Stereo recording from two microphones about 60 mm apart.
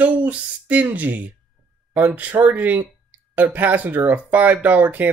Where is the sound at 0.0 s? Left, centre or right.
Right.